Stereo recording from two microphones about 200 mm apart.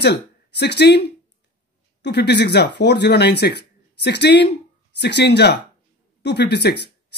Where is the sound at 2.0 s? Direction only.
55° left (ahead or behind).